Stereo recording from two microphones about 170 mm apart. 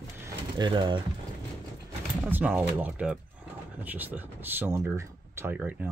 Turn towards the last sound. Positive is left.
turn(degrees=-10)  # may be behind; listen again after turning